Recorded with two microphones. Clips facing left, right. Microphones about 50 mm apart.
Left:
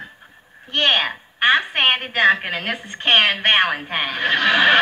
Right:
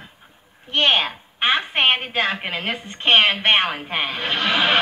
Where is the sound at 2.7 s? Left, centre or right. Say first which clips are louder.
Right 1 dB; left.